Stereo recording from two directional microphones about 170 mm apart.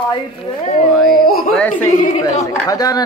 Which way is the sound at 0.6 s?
40° left (ahead or behind).